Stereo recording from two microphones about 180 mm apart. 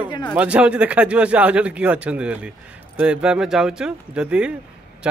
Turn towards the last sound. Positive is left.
turn(degrees=-5)  # may be behind; listen again after turning